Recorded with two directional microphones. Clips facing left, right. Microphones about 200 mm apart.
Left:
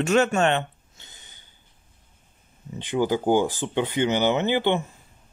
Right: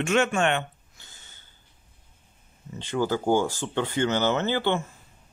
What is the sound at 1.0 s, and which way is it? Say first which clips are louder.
Gasp: left 2 dB; 15° left (ahead or behind).